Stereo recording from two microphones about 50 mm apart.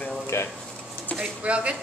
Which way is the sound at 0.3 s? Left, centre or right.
Left.